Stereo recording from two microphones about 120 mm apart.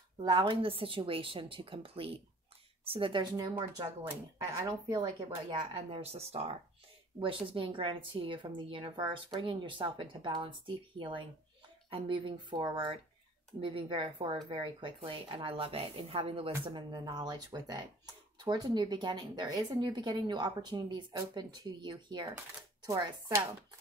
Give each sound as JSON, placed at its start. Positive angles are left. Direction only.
{"t": 0.2, "sound": "speech", "side_deg": -40}
{"t": 5.8, "sound": "speech", "side_deg": -55}
{"t": 7.2, "sound": "speech", "side_deg": -45}
{"t": 16.9, "sound": "speech", "side_deg": -35}